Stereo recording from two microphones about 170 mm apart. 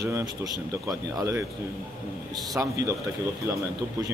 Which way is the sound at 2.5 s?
20° right (ahead or behind).